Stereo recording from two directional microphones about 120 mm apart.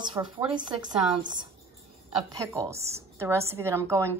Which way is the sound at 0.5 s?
40° right (ahead or behind).